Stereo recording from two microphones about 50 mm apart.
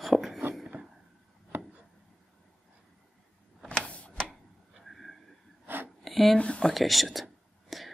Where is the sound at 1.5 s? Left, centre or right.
Right.